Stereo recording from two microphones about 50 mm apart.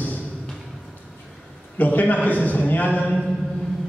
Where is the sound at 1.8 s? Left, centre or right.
Left.